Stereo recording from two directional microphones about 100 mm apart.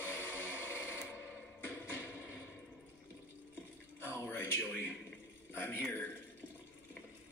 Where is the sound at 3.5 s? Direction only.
20° left (ahead or behind).